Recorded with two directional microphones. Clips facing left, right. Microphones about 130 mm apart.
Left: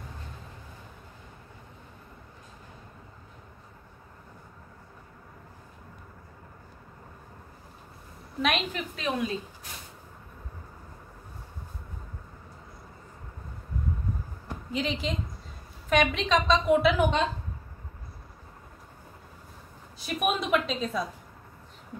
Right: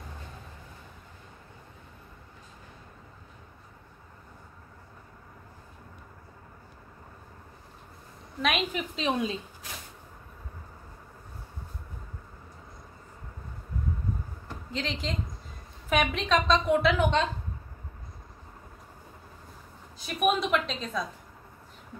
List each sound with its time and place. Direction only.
8.4 s a woman's voice: centre (ahead or behind)
8.7 s a woman's voice: 25° right (ahead or behind)
14.5 s a sound: 10° left (ahead or behind)
15.9 s a woman's voice: 5° right (ahead or behind)
20.0 s a woman's voice: centre (ahead or behind)